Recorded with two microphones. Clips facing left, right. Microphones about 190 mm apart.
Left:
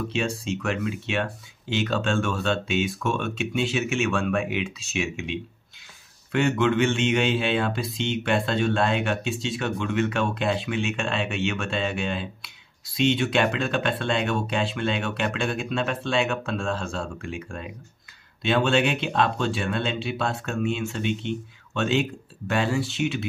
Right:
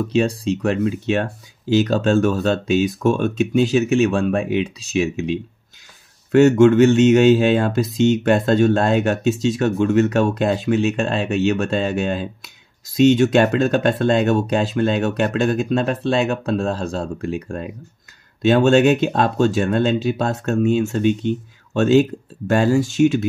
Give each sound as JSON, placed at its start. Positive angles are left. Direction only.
{"t": 0.1, "sound": "speech", "side_deg": -35}